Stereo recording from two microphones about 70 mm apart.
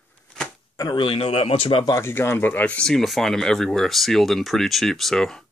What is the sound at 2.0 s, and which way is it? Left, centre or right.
Speech, left.